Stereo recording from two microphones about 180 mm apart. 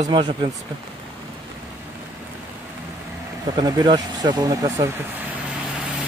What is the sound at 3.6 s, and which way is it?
Speech, 25° right (ahead or behind).